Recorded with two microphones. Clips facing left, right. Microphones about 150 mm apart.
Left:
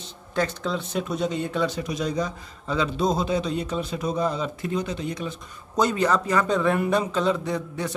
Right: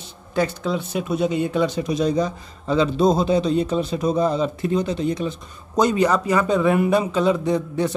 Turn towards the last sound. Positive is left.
turn(degrees=-25)  # may be behind; listen again after turning